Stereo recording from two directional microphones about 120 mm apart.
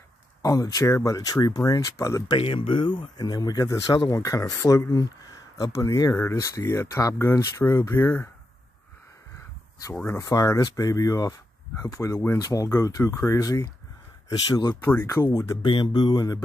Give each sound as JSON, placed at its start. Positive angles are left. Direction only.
{"t": 0.4, "sound": "speech", "side_deg": 30}
{"t": 2.2, "sound": "speech", "side_deg": 50}
{"t": 10.0, "sound": "speech", "side_deg": 25}
{"t": 12.4, "sound": "speech", "side_deg": 30}
{"t": 15.0, "sound": "speech", "side_deg": 25}
{"t": 15.6, "sound": "speech", "side_deg": 40}